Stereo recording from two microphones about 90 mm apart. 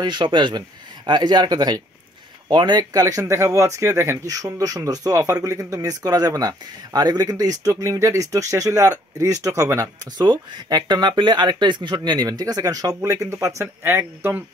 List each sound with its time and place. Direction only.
0.0 s speech: 60° right (ahead or behind); by 9.8 s 35° right (ahead or behind)
10.1 s speech: 55° right (ahead or behind); by 14.4 s 25° right (ahead or behind)